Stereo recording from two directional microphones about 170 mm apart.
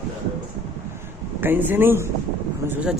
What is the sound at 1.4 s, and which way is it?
A man's voice, 10° right (ahead or behind).